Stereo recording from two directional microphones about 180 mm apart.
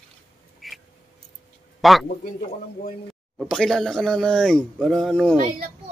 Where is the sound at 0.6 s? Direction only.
Centre (ahead or behind).